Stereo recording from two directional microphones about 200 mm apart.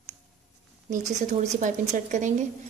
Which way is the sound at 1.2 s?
35° right (ahead or behind).